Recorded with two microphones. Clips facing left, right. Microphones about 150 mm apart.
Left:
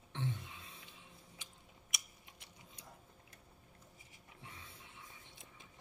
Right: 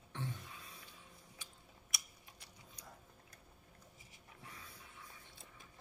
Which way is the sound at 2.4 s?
25° left (ahead or behind).